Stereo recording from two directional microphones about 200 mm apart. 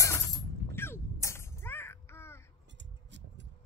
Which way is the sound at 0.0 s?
15° left (ahead or behind).